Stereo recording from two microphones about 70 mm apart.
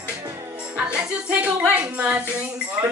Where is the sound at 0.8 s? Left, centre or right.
Centre.